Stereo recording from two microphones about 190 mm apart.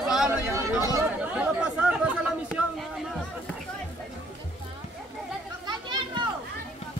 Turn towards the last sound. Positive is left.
turn(degrees=-25)  # may be behind; listen again after turning